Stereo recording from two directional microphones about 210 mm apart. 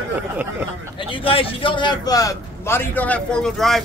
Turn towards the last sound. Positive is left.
turn(degrees=0)  # may be behind; listen again after turning